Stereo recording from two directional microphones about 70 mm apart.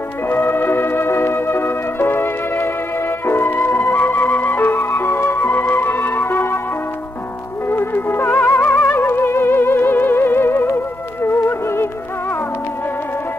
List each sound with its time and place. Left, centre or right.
0.3 s music: left
7.6 s music: left